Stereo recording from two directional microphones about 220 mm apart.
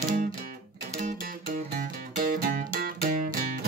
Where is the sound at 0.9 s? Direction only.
40° right (ahead or behind).